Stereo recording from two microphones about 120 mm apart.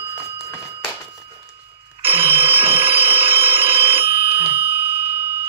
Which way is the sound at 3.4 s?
50° right (ahead or behind).